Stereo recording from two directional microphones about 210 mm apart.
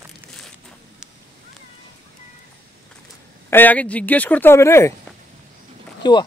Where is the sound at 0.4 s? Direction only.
Centre (ahead or behind).